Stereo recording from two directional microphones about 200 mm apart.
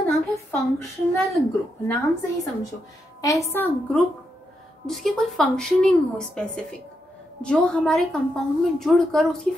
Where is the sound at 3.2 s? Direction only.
15° left (ahead or behind).